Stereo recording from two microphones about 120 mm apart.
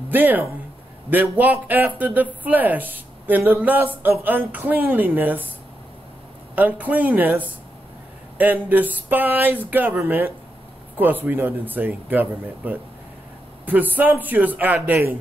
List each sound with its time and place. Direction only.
0.1 s speech: 15° right (ahead or behind)
6.5 s speech: 15° right (ahead or behind)